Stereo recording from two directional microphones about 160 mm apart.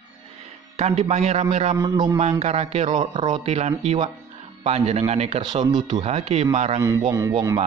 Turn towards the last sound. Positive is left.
turn(degrees=-20)  # may be behind; listen again after turning